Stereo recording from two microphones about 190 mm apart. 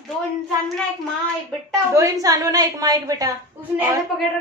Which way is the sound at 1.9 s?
15° right (ahead or behind).